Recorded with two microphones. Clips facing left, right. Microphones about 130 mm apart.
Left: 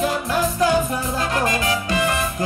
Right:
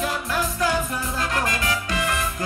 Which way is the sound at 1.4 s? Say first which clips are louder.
Left 4 dB; 20° left (ahead or behind).